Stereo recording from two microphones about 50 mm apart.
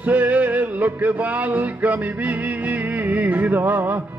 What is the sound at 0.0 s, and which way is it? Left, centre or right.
Music, right.